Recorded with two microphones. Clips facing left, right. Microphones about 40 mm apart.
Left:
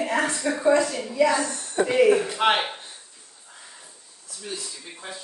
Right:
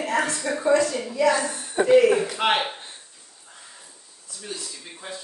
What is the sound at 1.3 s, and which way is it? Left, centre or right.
Speech, centre.